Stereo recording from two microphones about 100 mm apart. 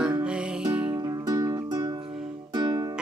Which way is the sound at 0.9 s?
40° right (ahead or behind).